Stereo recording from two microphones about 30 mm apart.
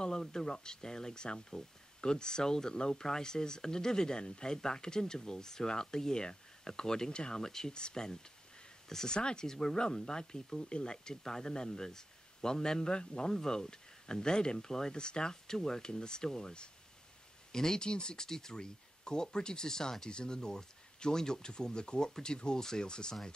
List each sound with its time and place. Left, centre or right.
0.3 s speech: left
1.2 s speech: left
7.1 s speech: left
7.4 s speech: centre
9.1 s speech: left
9.5 s speech: centre
13.3 s speech: centre
15.0 s speech: left
15.4 s speech: centre